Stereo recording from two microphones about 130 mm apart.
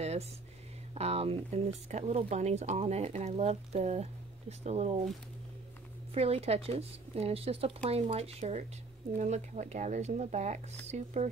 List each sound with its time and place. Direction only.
0.9 s speech: 50° right (ahead or behind)
6.1 s speech: 50° right (ahead or behind)